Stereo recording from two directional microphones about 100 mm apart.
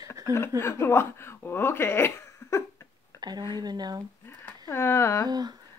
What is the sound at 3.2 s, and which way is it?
Speech, 45° right (ahead or behind).